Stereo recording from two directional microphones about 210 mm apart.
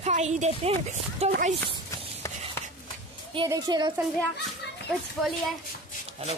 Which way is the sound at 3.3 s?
20° right (ahead or behind).